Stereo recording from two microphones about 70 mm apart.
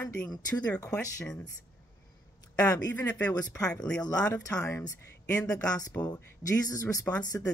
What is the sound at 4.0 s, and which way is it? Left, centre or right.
Speech, left.